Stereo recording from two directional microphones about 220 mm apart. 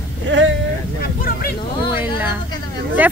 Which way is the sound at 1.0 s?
40° left (ahead or behind).